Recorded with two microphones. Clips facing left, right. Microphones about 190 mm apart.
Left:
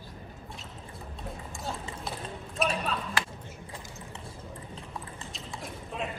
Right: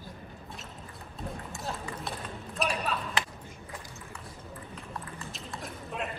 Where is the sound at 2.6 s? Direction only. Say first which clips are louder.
Left 2 dB; centre (ahead or behind).